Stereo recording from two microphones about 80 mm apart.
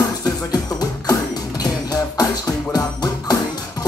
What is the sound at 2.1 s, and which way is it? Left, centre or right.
Music, left.